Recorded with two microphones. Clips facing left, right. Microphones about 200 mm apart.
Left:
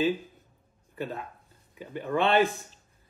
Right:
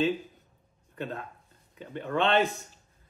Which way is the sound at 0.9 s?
5° left (ahead or behind).